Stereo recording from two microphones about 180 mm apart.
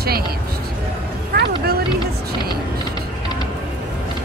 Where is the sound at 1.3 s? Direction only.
60° right (ahead or behind).